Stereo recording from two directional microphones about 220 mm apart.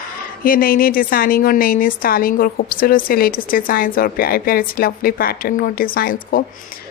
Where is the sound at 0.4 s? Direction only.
40° left (ahead or behind).